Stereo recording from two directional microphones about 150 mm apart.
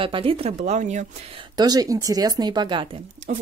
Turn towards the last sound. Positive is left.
turn(degrees=-55)  # may be behind; listen again after turning